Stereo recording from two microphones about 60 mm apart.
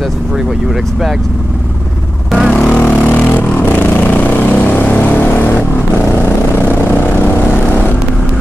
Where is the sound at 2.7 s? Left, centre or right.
Centre.